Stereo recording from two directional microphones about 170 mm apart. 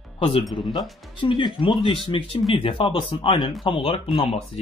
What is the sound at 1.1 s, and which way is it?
Speech, 30° left (ahead or behind).